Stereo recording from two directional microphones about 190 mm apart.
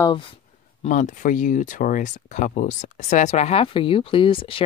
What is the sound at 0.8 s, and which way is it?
Speech, 40° left (ahead or behind).